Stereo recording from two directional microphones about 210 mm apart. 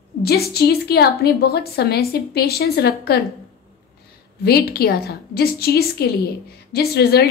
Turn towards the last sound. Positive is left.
turn(degrees=50)  # may be behind; listen again after turning